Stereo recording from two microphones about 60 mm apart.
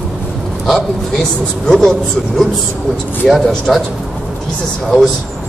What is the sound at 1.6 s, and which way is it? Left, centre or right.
A man's voice, centre.